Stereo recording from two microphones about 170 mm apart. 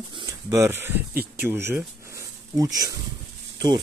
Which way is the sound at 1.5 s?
15° right (ahead or behind).